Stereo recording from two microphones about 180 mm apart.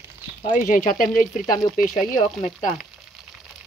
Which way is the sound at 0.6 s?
50° left (ahead or behind).